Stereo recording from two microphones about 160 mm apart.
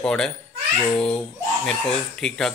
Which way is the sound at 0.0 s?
5° left (ahead or behind).